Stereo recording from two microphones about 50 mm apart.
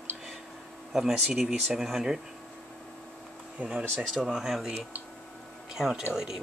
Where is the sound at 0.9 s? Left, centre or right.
Centre.